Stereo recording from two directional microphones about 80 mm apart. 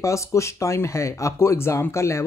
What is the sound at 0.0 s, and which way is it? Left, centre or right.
Speech, left.